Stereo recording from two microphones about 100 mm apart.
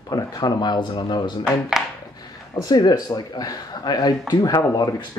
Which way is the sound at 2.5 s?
40° left (ahead or behind).